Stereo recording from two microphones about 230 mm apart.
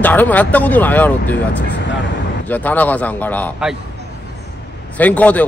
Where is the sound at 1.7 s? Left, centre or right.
Left.